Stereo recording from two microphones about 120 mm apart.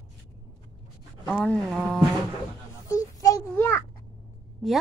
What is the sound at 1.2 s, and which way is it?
Speech, 5° left (ahead or behind).